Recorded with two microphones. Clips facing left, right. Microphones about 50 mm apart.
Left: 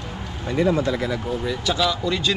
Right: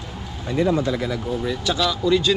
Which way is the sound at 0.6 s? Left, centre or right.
Left.